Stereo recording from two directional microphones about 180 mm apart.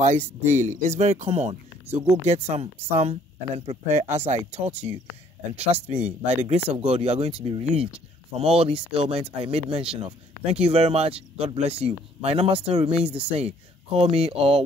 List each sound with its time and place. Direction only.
0.0 s speech: 40° right (ahead or behind)